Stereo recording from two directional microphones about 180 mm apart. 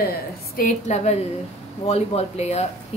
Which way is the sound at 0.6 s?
45° left (ahead or behind).